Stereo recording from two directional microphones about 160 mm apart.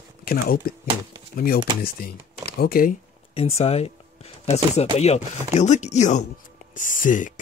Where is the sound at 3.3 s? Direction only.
40° left (ahead or behind).